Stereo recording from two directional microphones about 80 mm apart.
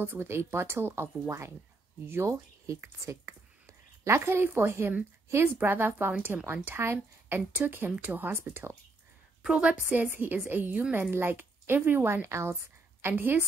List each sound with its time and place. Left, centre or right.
0.0 s speech: right
2.0 s a woman's voice: right
9.4 s a woman's voice: centre